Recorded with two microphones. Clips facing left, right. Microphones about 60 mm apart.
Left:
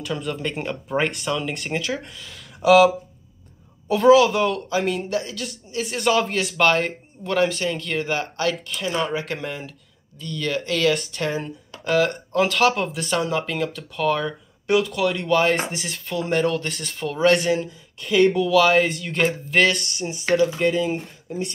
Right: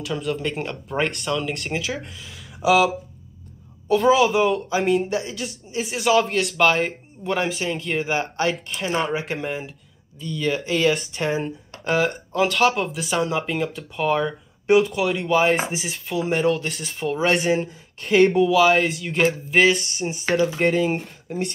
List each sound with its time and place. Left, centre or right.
0.0 s speech: centre
3.9 s speech: centre
5.1 s speech: centre
8.2 s speech: right
9.4 s speech: centre
14.9 s speech: centre
17.6 s speech: right
18.4 s speech: centre
19.9 s speech: right
20.5 s speech: right